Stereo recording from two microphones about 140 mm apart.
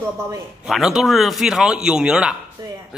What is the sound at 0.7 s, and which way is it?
Speech, centre (ahead or behind).